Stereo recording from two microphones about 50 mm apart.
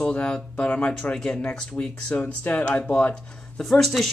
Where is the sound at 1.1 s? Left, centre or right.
Centre; by 3.1 s left.